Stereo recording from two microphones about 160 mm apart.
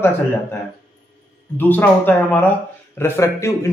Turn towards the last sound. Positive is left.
turn(degrees=15)  # may be behind; listen again after turning